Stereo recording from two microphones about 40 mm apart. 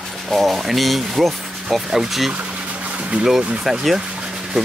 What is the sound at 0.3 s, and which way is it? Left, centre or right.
Speech, centre.